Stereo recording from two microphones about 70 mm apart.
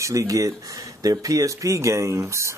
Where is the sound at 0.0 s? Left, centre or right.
Right.